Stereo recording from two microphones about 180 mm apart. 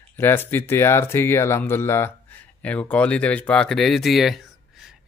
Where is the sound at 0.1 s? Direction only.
10° left (ahead or behind).